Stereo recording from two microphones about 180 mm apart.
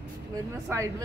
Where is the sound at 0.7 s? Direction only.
15° right (ahead or behind).